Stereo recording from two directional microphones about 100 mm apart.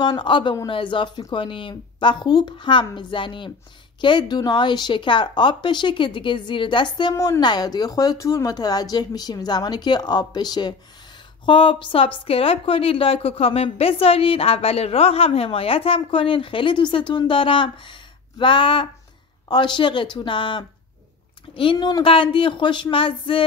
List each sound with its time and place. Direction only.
0.0 s a woman's voice: 50° left (ahead or behind)
7.2 s speech: 40° left (ahead or behind)
11.4 s a woman's voice: 55° left (ahead or behind)
21.7 s speech: 45° left (ahead or behind)
22.0 s a woman's voice: 60° left (ahead or behind)